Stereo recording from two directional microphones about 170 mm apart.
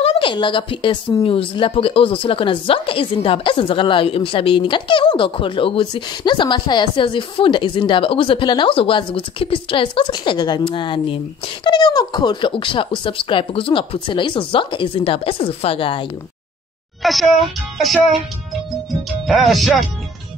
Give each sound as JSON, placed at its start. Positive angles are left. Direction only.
{"t": 0.0, "sound": "speech", "side_deg": 35}
{"t": 17.0, "sound": "speech", "side_deg": 0}
{"t": 19.2, "sound": "speech", "side_deg": 0}